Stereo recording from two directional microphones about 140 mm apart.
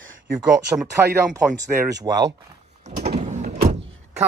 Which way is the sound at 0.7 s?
20° right (ahead or behind).